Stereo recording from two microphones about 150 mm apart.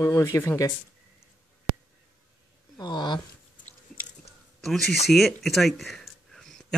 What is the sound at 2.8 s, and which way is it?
Speech, 30° left (ahead or behind).